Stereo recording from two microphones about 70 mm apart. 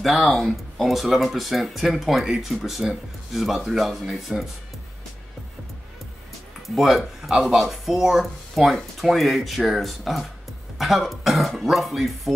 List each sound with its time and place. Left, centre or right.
0.0 s speech: centre
6.7 s speech: centre